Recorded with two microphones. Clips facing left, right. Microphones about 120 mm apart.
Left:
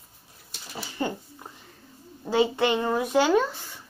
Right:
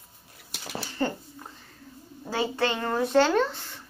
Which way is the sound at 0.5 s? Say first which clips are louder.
Right 3 dB; 90° right.